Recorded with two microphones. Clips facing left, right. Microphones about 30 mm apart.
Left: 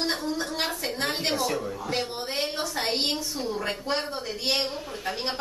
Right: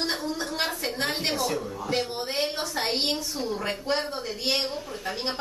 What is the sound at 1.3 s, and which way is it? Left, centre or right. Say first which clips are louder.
A woman's voice: left 1 dB; centre.